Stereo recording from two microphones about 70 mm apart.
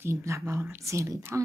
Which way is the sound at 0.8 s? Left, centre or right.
Right.